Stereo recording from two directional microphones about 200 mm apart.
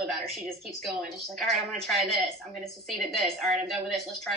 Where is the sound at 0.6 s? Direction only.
Centre (ahead or behind).